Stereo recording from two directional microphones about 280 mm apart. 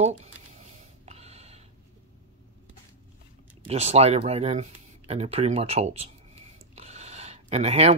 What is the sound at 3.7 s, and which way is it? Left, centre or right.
Speech, right.